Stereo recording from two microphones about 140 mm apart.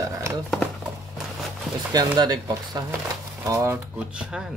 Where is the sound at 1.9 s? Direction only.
30° right (ahead or behind).